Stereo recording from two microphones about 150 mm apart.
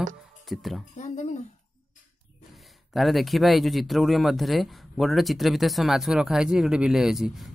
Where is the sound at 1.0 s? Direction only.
50° left (ahead or behind).